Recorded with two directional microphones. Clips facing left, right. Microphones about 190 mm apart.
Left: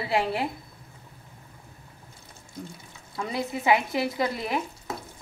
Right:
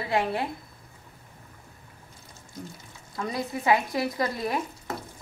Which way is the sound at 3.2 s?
25° left (ahead or behind).